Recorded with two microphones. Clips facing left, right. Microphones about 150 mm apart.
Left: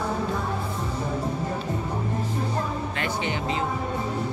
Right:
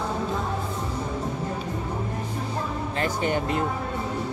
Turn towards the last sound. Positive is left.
turn(degrees=-50)  # may be behind; listen again after turning